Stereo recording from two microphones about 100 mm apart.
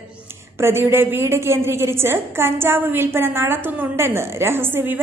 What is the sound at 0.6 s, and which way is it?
A woman's voice, 25° right (ahead or behind).